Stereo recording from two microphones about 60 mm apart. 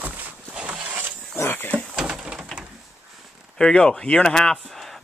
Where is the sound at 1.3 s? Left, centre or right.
Left.